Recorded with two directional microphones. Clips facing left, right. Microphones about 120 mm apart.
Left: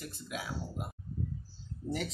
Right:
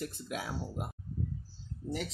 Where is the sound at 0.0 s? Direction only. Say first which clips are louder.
Right 3 dB; 50° right (ahead or behind).